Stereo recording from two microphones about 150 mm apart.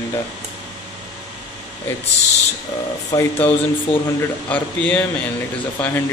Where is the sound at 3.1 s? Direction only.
20° left (ahead or behind).